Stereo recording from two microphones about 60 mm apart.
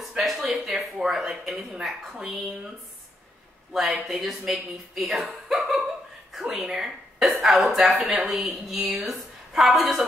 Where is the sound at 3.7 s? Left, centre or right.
Centre.